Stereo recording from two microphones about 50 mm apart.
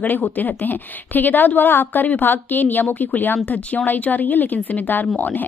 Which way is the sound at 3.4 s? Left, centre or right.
Left.